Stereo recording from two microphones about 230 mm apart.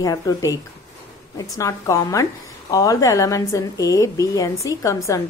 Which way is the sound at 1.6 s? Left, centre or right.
Centre.